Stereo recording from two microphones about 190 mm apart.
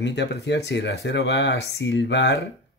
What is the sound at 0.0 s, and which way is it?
Speech, 65° left (ahead or behind).